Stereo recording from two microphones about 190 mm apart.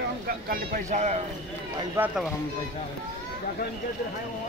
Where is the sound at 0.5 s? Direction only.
45° right (ahead or behind).